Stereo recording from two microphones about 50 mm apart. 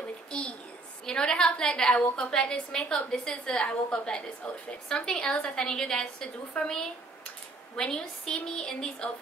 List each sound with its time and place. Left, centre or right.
1.0 s a woman's voice: centre